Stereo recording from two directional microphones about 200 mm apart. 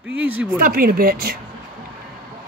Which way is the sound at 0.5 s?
45° right (ahead or behind).